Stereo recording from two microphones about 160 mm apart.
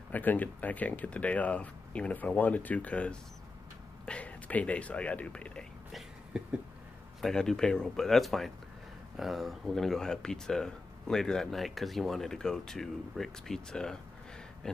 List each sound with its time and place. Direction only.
0.1 s speech: 10° left (ahead or behind)